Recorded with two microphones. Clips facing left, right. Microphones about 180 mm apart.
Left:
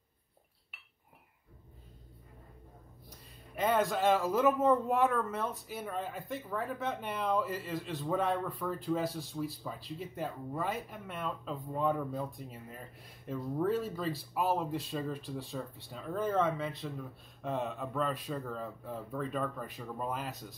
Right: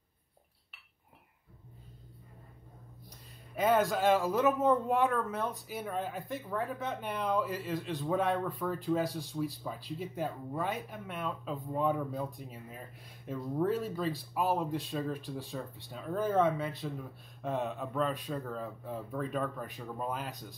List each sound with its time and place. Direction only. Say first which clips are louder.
3.1 s speech: left 1 dB; 5° right (ahead or behind)